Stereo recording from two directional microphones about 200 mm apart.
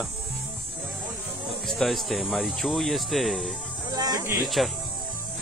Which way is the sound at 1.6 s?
Centre (ahead or behind).